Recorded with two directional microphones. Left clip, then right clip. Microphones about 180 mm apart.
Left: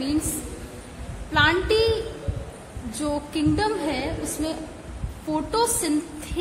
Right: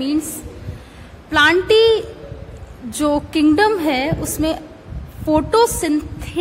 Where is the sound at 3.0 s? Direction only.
35° right (ahead or behind).